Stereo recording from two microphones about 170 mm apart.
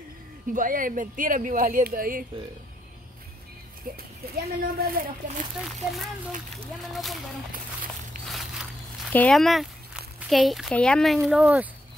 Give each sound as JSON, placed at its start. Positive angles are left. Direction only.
{"t": 0.5, "sound": "speech", "side_deg": -55}
{"t": 3.9, "sound": "speech", "side_deg": -60}
{"t": 5.6, "sound": "speech", "side_deg": 0}
{"t": 7.5, "sound": "a sound", "side_deg": -55}
{"t": 8.3, "sound": "a sound", "side_deg": 0}
{"t": 9.1, "sound": "speech", "side_deg": 5}